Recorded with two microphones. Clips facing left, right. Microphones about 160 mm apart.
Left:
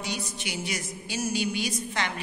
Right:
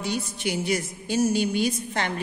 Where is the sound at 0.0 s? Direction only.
50° right (ahead or behind).